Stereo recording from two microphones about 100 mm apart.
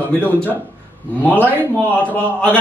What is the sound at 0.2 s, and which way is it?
A man's voice, 15° left (ahead or behind).